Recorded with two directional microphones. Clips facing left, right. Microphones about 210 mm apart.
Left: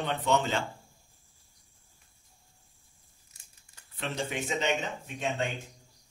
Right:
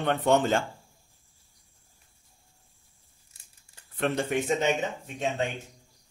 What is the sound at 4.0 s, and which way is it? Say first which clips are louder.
Speech: right 7 dB; 55° right (ahead or behind).